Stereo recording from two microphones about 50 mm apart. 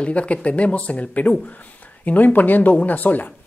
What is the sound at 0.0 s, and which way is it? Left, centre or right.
Speech, left.